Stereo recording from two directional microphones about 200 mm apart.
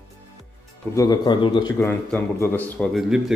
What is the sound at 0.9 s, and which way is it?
A man's voice, 20° left (ahead or behind).